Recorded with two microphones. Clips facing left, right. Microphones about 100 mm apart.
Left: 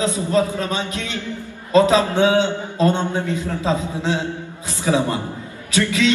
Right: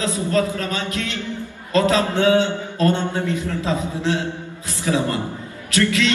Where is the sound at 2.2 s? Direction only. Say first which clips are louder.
Even; 20° left (ahead or behind).